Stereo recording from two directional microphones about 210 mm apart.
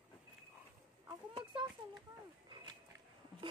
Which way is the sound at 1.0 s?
20° right (ahead or behind).